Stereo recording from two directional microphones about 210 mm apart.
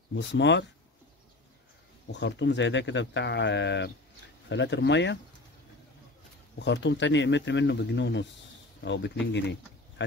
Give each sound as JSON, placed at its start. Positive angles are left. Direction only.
{"t": 0.1, "sound": "speech", "side_deg": 55}
{"t": 2.1, "sound": "speech", "side_deg": 60}
{"t": 6.6, "sound": "speech", "side_deg": 55}